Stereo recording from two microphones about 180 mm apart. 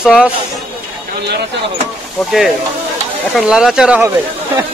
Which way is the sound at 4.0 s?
15° right (ahead or behind).